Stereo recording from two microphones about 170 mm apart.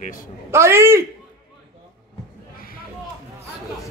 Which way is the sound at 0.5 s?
15° right (ahead or behind).